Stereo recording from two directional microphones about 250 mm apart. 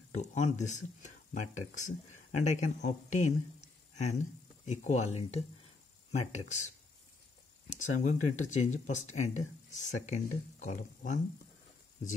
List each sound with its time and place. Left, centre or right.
0.2 s speech: left
3.9 s a sound: left
4.6 s speech: left
8.0 s speech: left